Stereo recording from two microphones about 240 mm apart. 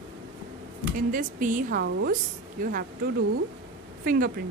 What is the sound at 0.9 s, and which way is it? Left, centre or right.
Speech, right.